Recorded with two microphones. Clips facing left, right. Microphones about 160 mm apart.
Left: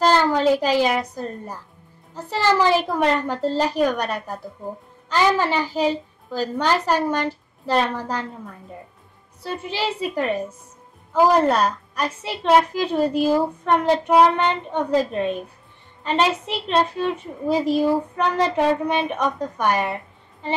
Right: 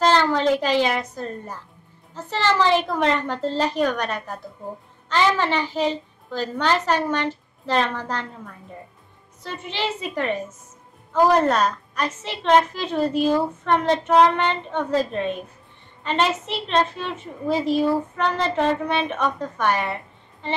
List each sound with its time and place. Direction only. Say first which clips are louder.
0.0 s a woman's voice: left 1 dB; 10° left (ahead or behind)
9.4 s a woman's voice: left 2 dB; 10° left (ahead or behind)